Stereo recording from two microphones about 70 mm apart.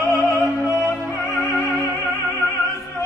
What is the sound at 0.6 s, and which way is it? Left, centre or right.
Music, left.